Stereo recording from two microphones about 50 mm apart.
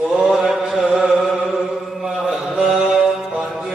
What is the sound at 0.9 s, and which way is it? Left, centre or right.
Chant, right.